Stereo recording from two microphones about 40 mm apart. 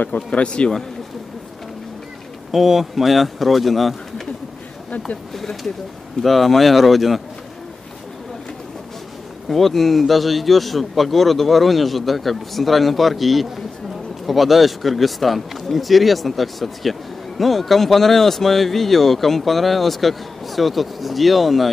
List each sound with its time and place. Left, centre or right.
0.3 s a man's voice: left
2.5 s speech: centre
5.3 s speech: centre
9.5 s speech: centre